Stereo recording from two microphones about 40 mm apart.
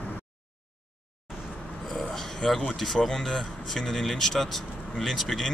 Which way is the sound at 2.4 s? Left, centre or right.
Centre.